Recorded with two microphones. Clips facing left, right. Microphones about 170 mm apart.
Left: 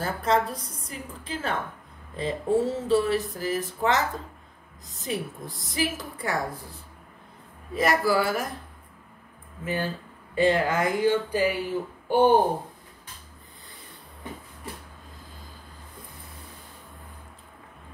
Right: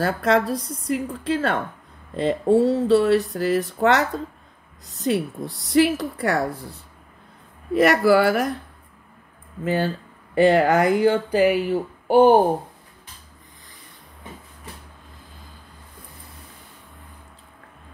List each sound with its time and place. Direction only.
0.0 s speech: 75° right (ahead or behind)
7.7 s speech: 65° right (ahead or behind)
10.3 s speech: 65° right (ahead or behind)
12.1 s speech: 90° right